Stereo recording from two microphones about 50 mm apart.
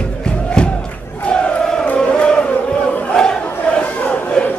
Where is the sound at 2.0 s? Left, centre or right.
Centre.